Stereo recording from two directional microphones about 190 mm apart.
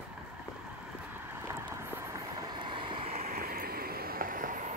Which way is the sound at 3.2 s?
50° right (ahead or behind).